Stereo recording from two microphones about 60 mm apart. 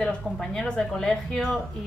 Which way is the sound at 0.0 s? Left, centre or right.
Centre.